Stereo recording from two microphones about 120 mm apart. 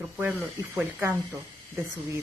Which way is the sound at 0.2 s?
20° right (ahead or behind).